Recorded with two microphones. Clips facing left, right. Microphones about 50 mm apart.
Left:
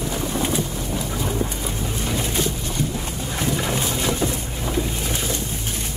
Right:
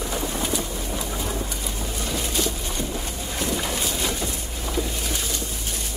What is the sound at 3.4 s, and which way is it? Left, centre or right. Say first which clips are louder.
Boat: left 3 dB; left.